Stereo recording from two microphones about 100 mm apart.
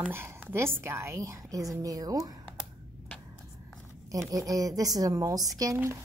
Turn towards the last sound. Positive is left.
turn(degrees=-35)  # may be behind; listen again after turning